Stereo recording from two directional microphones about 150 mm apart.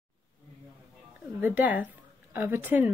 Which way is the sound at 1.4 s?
10° right (ahead or behind).